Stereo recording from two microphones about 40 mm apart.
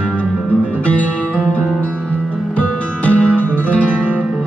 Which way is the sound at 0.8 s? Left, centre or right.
Left.